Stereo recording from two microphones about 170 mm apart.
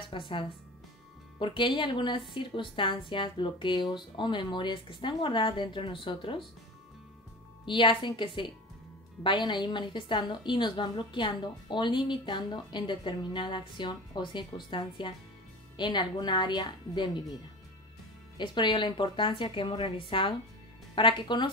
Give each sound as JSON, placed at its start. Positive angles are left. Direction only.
{"t": 0.1, "sound": "speech", "side_deg": 30}
{"t": 1.4, "sound": "a woman's voice", "side_deg": 30}
{"t": 7.6, "sound": "a woman's voice", "side_deg": 30}
{"t": 18.4, "sound": "a woman's voice", "side_deg": 30}